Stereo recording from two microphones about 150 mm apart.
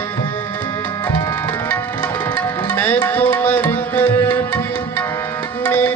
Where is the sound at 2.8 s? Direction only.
15° left (ahead or behind).